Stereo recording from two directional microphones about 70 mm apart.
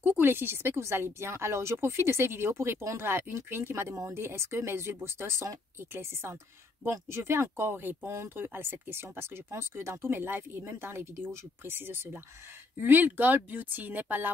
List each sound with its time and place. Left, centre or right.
0.2 s speech: right
6.8 s speech: right